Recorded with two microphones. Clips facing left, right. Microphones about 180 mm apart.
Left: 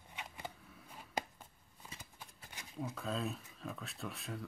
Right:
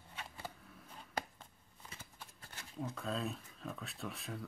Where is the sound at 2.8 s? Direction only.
Centre (ahead or behind).